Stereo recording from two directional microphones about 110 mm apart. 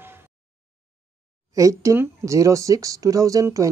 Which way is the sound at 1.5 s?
30° right (ahead or behind).